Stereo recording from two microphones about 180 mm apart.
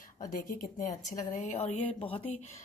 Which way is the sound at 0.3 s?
50° left (ahead or behind).